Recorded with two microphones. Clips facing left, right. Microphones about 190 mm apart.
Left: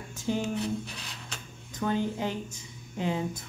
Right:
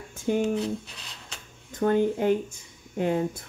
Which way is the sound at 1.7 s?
50° right (ahead or behind).